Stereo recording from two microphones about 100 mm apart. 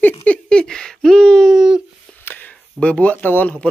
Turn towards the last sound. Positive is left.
turn(degrees=15)  # may be behind; listen again after turning